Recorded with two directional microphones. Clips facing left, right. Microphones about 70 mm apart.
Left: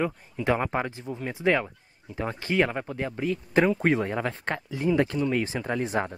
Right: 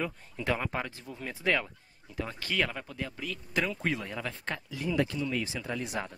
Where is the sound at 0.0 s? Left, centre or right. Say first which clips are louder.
Left 7 dB; left.